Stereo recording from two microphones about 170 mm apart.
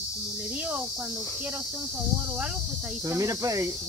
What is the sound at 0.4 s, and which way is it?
Cricket, 5° right (ahead or behind).